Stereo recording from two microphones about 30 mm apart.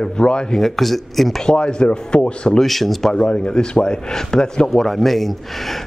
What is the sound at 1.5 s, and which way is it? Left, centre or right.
Speech, left.